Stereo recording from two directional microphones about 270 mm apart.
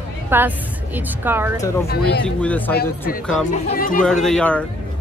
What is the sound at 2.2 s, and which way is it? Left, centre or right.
Speech, centre.